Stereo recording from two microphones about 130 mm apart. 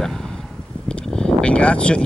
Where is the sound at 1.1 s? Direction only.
10° left (ahead or behind).